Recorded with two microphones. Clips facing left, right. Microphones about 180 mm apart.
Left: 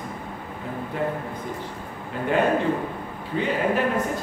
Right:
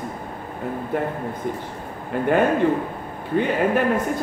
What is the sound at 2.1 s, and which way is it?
Speech, 55° right (ahead or behind).